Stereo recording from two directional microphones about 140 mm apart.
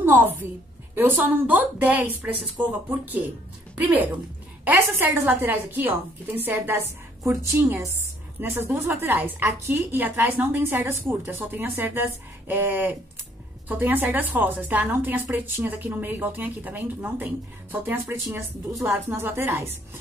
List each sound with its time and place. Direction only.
0.9 s a woman's voice: 15° right (ahead or behind)
3.7 s a woman's voice: 10° right (ahead or behind)